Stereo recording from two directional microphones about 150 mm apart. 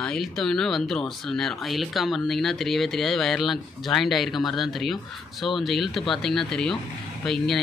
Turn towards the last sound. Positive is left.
turn(degrees=0)  # may be behind; listen again after turning